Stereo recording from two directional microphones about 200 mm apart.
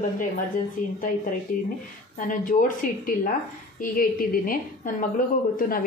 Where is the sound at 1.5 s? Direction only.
45° left (ahead or behind).